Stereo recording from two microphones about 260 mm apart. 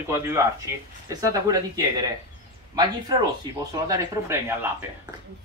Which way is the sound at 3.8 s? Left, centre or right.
Centre.